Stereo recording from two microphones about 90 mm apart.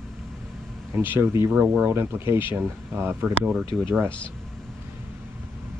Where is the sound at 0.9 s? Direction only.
20° right (ahead or behind).